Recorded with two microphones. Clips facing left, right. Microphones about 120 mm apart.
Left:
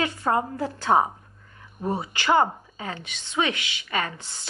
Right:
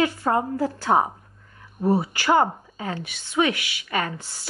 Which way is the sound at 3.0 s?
20° left (ahead or behind).